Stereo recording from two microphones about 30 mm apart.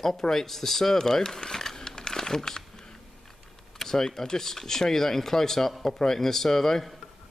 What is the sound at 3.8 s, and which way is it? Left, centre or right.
Speech, centre.